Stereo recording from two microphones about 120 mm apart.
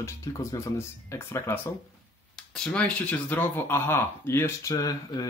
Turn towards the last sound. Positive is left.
turn(degrees=30)  # may be behind; listen again after turning